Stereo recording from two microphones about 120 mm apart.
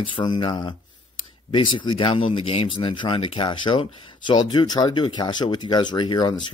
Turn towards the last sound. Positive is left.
turn(degrees=35)  # may be behind; listen again after turning